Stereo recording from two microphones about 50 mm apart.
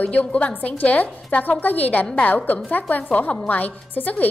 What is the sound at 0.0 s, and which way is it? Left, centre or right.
A woman's voice, left.